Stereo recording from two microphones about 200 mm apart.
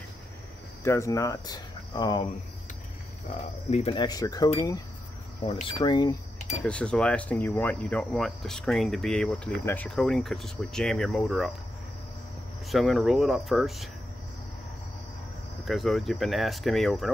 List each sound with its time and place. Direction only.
0.8 s speech: 15° left (ahead or behind)
3.9 s speech: 20° left (ahead or behind)
6.6 s speech: 5° left (ahead or behind)
12.6 s speech: centre (ahead or behind)
15.6 s speech: centre (ahead or behind)